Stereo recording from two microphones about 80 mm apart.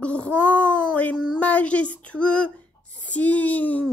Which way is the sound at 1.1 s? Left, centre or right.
Centre.